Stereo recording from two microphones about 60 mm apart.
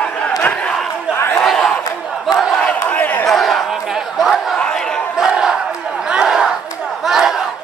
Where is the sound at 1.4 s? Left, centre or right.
Centre.